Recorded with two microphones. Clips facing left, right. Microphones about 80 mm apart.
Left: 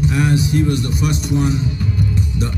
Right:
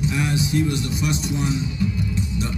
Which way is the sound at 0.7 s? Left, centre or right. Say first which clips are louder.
Left 4 dB; left.